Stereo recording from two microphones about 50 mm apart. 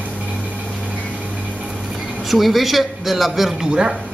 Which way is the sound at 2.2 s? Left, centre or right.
Centre.